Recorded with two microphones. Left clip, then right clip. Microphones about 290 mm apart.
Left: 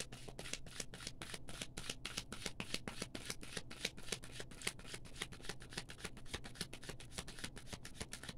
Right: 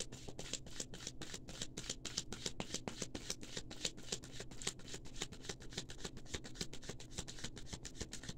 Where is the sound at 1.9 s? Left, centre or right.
Centre.